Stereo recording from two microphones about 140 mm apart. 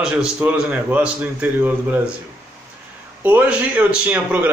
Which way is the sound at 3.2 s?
10° right (ahead or behind).